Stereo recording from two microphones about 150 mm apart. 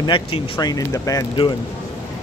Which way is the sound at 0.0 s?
30° left (ahead or behind).